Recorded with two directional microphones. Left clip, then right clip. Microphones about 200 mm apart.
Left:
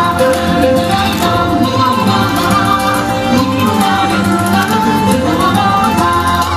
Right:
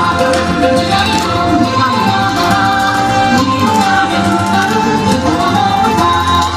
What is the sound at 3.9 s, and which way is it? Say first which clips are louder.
Music: right 1 dB; 25° left (ahead or behind).